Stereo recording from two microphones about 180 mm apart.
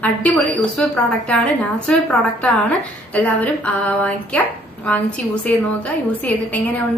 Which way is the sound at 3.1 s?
5° left (ahead or behind).